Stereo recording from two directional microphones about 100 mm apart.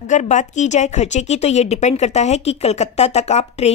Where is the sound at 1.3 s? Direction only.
90° left.